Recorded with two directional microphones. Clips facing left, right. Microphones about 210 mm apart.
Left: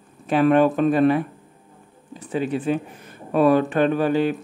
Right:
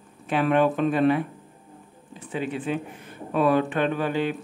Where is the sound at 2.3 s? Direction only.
40° left (ahead or behind).